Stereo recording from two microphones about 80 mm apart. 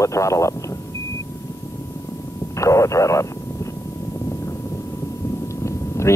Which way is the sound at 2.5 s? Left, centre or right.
Left.